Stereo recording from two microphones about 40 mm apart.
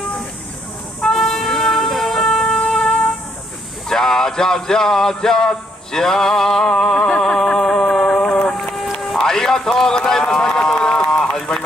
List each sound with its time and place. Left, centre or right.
1.0 s music: centre
3.9 s a sound: centre
9.2 s run: centre